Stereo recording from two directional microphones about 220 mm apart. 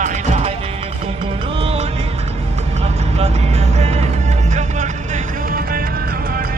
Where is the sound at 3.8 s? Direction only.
30° right (ahead or behind).